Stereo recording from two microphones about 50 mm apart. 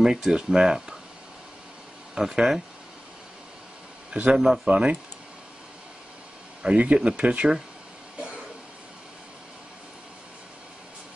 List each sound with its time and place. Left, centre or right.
0.0 s speech: centre
2.1 s speech: centre
4.1 s a man's voice: centre
6.6 s speech: right